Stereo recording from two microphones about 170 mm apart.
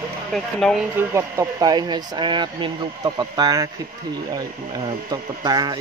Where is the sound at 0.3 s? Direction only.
Centre (ahead or behind).